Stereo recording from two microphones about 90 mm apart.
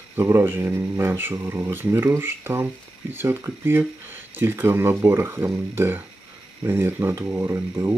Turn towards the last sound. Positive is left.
turn(degrees=-30)  # may be behind; listen again after turning